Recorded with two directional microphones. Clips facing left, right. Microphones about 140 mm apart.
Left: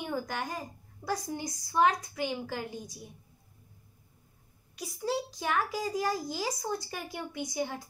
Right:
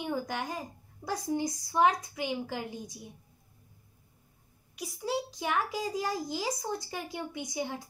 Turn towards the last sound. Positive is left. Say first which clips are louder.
# left 1 dB
turn(degrees=-20)  # may be behind; listen again after turning